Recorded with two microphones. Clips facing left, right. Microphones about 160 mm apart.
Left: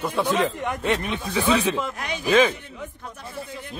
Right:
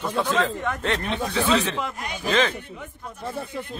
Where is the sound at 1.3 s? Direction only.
10° left (ahead or behind).